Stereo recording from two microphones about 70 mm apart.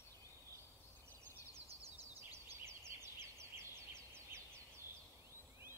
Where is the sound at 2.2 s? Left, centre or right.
Right.